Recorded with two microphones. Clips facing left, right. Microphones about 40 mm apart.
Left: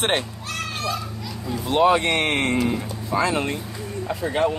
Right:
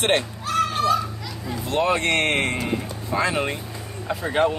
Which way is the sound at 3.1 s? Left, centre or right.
Centre.